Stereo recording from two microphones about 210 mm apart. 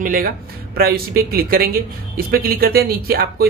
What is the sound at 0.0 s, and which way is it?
Speech, 40° right (ahead or behind).